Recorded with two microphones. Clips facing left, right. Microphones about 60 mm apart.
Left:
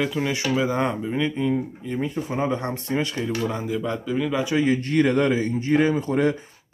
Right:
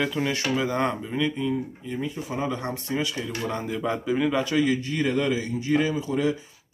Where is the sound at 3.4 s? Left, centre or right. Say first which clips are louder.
Left 2 dB; centre.